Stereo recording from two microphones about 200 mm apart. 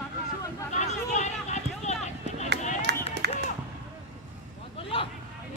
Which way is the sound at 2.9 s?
55° right (ahead or behind).